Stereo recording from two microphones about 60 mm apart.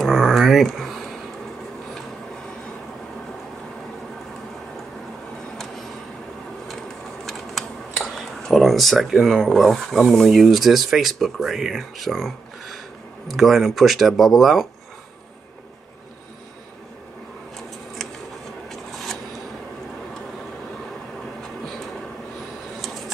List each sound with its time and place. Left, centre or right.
0.0 s a sound: centre
7.2 s speech: centre
13.3 s speech: centre